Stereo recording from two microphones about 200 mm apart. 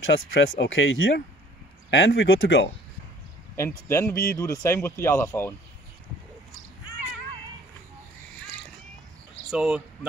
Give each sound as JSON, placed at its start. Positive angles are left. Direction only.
{"t": 0.1, "sound": "speech", "side_deg": 65}
{"t": 3.5, "sound": "speech", "side_deg": 15}
{"t": 9.5, "sound": "speech", "side_deg": -5}